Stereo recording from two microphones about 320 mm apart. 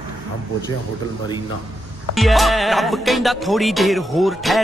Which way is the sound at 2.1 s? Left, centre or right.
Centre.